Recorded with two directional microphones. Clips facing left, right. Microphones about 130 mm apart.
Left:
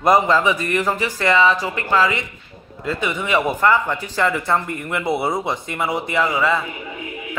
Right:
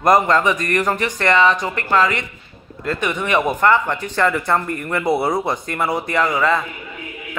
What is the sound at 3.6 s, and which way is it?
Speech, 30° right (ahead or behind).